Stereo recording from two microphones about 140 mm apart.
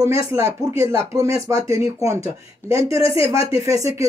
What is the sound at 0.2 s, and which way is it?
Speech, 20° right (ahead or behind).